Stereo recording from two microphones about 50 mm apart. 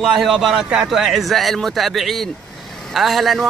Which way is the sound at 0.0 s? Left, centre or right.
Centre.